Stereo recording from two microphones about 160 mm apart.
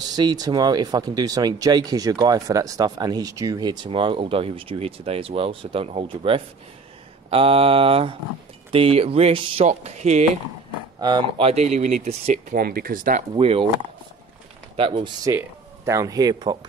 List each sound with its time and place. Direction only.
0.1 s speech: 25° right (ahead or behind); by 10.3 s 45° right (ahead or behind)
11.0 s speech: 30° right (ahead or behind)
12.5 s speech: 65° right (ahead or behind)
13.4 s speech: 35° right (ahead or behind)
14.8 s speech: 35° right (ahead or behind)
15.2 s speech: 20° right (ahead or behind)